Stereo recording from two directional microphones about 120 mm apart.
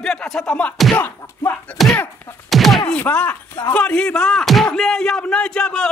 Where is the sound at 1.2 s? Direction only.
25° left (ahead or behind).